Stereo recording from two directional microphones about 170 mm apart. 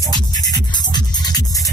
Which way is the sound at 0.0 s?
25° left (ahead or behind).